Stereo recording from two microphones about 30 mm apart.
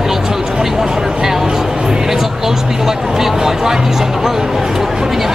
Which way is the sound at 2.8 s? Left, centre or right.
Centre.